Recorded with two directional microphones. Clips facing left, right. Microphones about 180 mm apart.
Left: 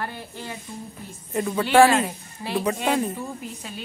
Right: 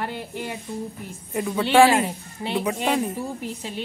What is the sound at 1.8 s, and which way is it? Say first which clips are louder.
Speech: right 1 dB; 25° right (ahead or behind).